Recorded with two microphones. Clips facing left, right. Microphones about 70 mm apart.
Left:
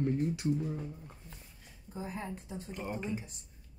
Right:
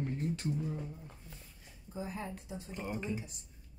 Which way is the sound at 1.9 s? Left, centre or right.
Left.